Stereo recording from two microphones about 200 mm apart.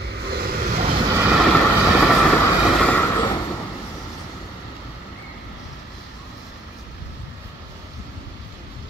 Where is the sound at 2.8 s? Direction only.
10° left (ahead or behind).